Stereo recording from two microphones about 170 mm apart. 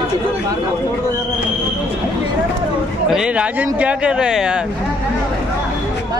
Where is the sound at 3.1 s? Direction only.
5° right (ahead or behind).